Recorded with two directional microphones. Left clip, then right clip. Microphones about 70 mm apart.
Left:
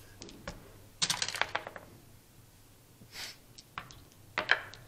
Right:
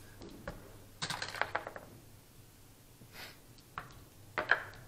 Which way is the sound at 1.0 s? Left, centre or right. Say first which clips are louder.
Left 5 dB; centre.